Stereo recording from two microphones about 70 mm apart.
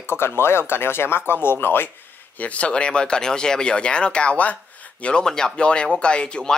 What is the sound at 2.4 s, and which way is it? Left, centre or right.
Speech, centre.